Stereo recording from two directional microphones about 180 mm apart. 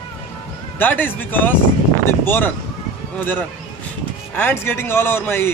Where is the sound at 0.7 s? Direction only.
10° left (ahead or behind).